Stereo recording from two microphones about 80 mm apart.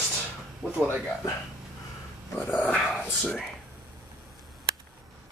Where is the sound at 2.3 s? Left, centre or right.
Left.